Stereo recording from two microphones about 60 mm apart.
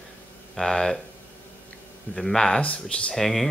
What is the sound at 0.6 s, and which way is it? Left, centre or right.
Speech, centre.